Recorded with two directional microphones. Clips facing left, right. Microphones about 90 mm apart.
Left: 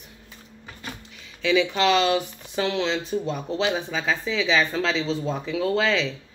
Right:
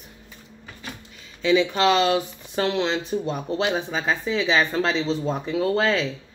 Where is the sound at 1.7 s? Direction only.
35° right (ahead or behind).